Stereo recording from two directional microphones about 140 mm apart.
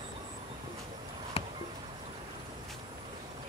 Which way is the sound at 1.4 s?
50° left (ahead or behind).